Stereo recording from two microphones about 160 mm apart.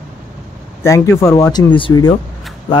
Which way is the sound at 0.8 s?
20° left (ahead or behind).